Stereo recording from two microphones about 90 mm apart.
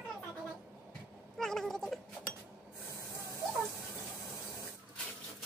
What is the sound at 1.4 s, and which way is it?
Cat, 5° left (ahead or behind).